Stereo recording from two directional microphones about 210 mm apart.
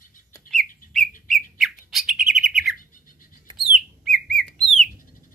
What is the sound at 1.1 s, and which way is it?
Bird, 40° left (ahead or behind).